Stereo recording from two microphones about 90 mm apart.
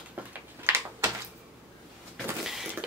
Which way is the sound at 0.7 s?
25° right (ahead or behind).